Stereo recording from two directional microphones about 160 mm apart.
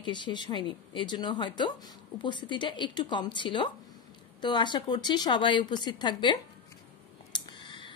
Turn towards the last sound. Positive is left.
turn(degrees=30)  # may be behind; listen again after turning